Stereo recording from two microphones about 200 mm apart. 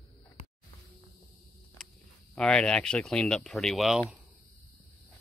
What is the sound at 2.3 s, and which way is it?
Speech, 5° left (ahead or behind).